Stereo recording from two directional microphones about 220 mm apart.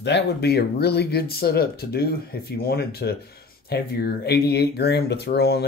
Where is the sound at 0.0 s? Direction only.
50° left (ahead or behind).